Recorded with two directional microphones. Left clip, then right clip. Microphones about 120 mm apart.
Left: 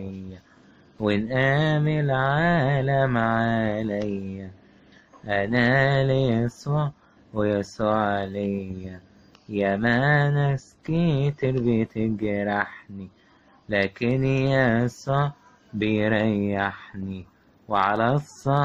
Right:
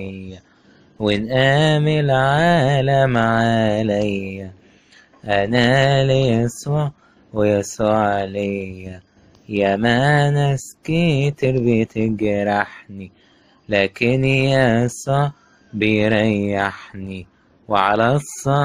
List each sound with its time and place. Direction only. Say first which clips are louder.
0.9 s speech: right 5 dB; 15° right (ahead or behind)
1.3 s mantra: right 8 dB; 35° right (ahead or behind)
4.9 s speech: right 7 dB; 30° right (ahead or behind)